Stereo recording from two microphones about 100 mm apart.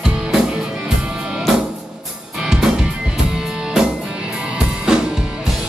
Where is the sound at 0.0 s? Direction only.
5° right (ahead or behind).